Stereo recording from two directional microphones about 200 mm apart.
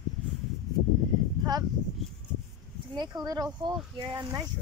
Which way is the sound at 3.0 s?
20° right (ahead or behind).